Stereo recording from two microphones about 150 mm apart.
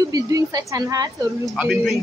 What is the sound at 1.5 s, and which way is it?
Speech, centre (ahead or behind).